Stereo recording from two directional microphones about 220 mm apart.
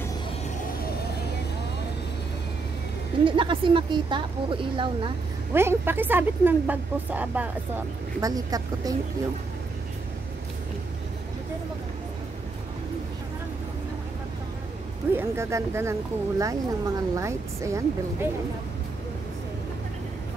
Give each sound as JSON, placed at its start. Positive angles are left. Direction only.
{"t": 3.3, "sound": "a woman's voice", "side_deg": -20}
{"t": 5.5, "sound": "speech", "side_deg": -10}
{"t": 15.1, "sound": "speech", "side_deg": -10}